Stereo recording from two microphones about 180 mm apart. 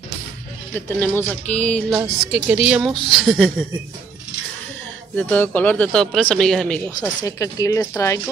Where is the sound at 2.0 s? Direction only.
5° right (ahead or behind).